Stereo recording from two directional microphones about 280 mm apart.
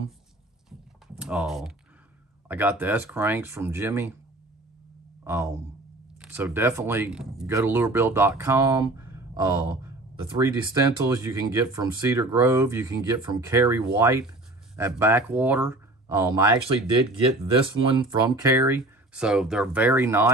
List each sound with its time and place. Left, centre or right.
0.7 s a sound: centre
2.4 s speech: centre
5.2 s speech: centre